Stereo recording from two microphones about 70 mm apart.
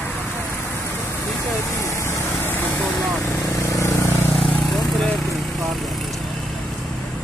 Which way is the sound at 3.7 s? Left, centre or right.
Left.